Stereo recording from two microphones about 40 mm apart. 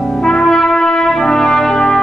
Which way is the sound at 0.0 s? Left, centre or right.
Centre.